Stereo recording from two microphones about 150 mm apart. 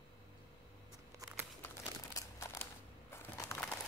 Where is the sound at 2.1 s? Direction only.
20° left (ahead or behind).